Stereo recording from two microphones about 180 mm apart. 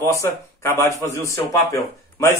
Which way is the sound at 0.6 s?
15° left (ahead or behind).